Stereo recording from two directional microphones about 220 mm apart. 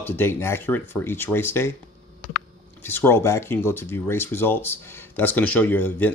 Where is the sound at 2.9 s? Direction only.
10° left (ahead or behind).